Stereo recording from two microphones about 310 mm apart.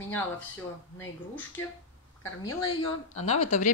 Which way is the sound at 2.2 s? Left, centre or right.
Centre.